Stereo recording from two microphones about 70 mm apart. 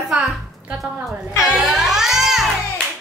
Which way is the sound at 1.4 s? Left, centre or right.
Centre.